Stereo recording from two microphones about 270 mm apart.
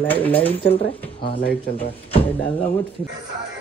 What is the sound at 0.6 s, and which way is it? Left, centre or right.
Speech, left.